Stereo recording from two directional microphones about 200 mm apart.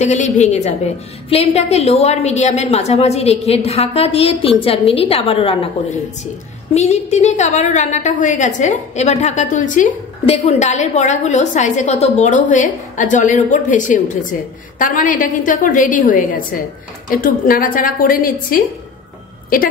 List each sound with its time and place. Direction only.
0.0 s a woman's voice: 35° left (ahead or behind)